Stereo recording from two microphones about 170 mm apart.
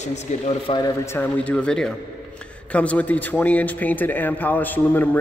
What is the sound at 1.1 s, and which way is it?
A man's voice, 10° left (ahead or behind).